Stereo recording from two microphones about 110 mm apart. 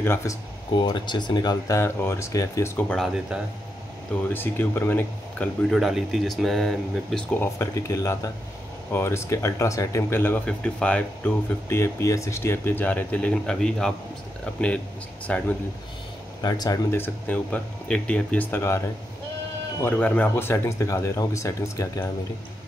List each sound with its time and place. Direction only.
0.0 s speech: 25° left (ahead or behind)
0.7 s speech: 45° left (ahead or behind)
1.8 s speech: 25° left (ahead or behind)
4.3 s speech: 20° left (ahead or behind)
5.6 s speech: centre (ahead or behind)
7.3 s speech: 25° left (ahead or behind)
11.7 s speech: 25° left (ahead or behind)
16.3 s speech: 35° left (ahead or behind)
16.9 s speech: 15° left (ahead or behind)
19.8 s speech: 15° left (ahead or behind)